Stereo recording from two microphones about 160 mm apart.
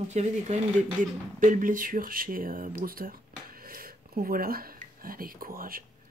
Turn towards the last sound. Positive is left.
turn(degrees=-65)  # may be behind; listen again after turning